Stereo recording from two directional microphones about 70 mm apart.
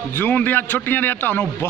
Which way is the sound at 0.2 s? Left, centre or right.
Left.